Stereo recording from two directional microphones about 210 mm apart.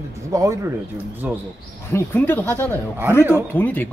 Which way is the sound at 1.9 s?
10° left (ahead or behind).